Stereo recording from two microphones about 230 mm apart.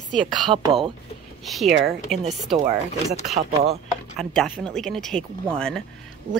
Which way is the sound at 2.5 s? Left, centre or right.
Right.